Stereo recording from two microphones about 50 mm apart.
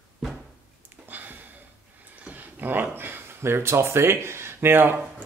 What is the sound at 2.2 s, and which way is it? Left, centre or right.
Speech, right.